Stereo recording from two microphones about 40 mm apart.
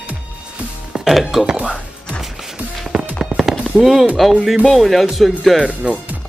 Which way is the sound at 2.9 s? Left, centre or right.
Centre.